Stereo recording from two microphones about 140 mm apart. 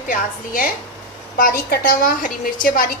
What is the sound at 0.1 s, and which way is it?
A woman's voice, 80° left.